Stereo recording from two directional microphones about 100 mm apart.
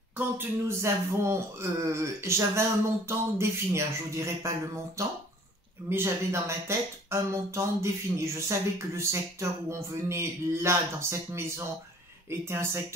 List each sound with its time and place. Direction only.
0.4 s speech: 25° right (ahead or behind)